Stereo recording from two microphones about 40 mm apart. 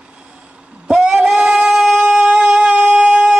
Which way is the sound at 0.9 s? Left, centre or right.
Right.